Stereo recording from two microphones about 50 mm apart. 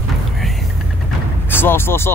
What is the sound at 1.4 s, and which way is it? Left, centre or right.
Speech, left.